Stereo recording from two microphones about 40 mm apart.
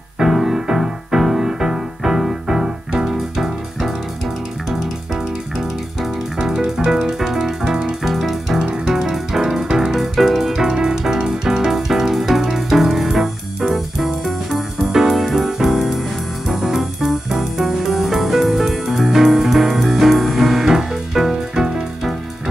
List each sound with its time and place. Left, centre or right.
0.2 s music: centre
8.6 s music: right; by 10.5 s centre
10.5 s music: centre